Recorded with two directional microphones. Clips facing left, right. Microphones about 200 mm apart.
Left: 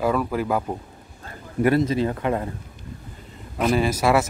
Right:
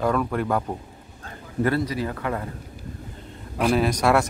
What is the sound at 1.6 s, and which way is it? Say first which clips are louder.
Speech: left 4 dB; 20° left (ahead or behind).